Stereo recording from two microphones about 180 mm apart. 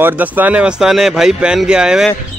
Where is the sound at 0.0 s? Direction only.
10° right (ahead or behind).